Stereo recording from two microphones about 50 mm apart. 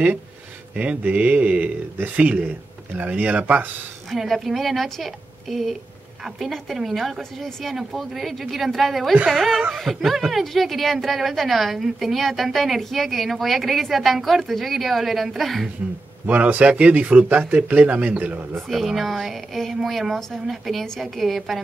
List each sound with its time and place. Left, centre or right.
0.7 s a man's voice: right
4.1 s speech: centre
6.8 s speech: centre
16.3 s speech: right
18.7 s speech: centre